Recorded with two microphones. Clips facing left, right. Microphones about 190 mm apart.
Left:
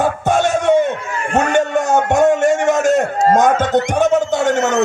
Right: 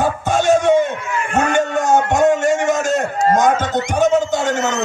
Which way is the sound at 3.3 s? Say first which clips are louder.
Left 3 dB; 55° left (ahead or behind).